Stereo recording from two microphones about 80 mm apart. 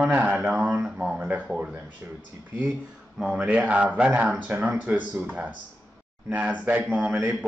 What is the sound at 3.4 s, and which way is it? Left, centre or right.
Speech, centre.